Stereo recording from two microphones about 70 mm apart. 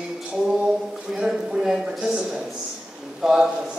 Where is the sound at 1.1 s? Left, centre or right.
Centre.